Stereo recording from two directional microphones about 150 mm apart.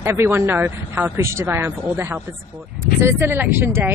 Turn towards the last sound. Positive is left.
turn(degrees=-15)  # may be behind; listen again after turning